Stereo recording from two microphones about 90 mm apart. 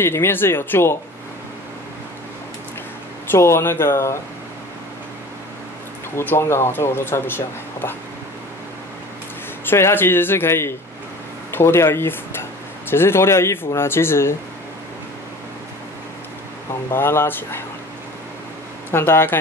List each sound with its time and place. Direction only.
0.0 s speech: 25° left (ahead or behind)
3.3 s speech: 30° left (ahead or behind)
6.1 s speech: 25° left (ahead or behind)
9.7 s speech: 25° left (ahead or behind)
16.9 s speech: 25° left (ahead or behind)
18.9 s speech: 25° left (ahead or behind)